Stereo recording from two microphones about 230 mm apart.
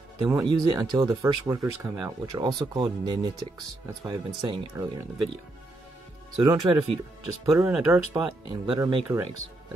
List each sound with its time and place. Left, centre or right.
0.2 s speech: centre
6.3 s speech: centre